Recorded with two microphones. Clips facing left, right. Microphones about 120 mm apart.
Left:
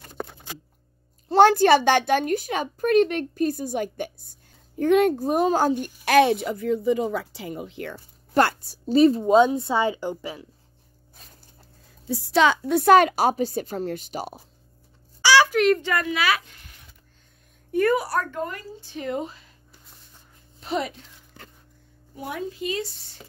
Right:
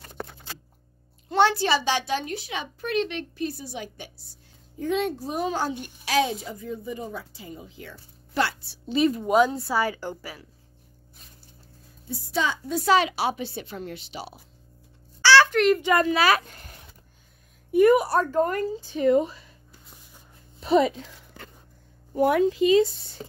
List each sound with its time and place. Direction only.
0.2 s a sound: 15° left (ahead or behind)
1.3 s a woman's voice: 50° left (ahead or behind)
6.0 s speech: 60° left (ahead or behind); by 9.2 s 40° left (ahead or behind)
9.2 s a woman's voice: 25° left (ahead or behind)
12.1 s a woman's voice: 80° left; by 14.3 s 45° left (ahead or behind)
15.2 s a sound: 10° left (ahead or behind)
16.0 s a woman's voice: 35° right (ahead or behind)
17.6 s speech: 15° right (ahead or behind)
18.4 s a woman's voice: 45° right (ahead or behind)
22.1 s a woman's voice: 65° right (ahead or behind); by 22.7 s 85° right